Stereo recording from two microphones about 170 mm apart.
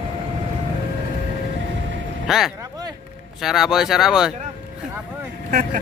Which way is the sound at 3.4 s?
Centre (ahead or behind).